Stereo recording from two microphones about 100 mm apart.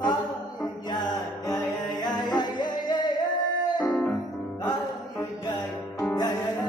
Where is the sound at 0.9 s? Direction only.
45° left (ahead or behind).